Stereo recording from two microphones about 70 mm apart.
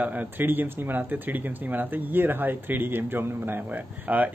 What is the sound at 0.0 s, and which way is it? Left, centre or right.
Speech, right.